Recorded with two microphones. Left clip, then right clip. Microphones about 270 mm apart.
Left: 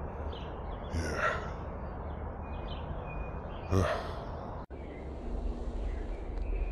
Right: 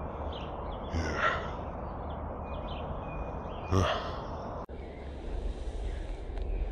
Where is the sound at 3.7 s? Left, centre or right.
Centre.